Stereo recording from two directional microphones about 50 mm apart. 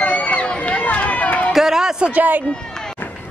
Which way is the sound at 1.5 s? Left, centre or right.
Centre.